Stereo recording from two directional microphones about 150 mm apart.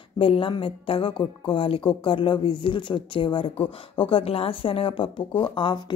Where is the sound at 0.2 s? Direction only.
35° left (ahead or behind).